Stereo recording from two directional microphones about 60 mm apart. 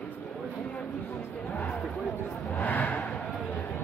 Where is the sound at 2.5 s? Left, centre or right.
Left.